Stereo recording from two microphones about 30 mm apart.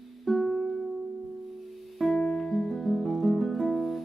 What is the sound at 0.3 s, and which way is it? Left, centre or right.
Music, centre.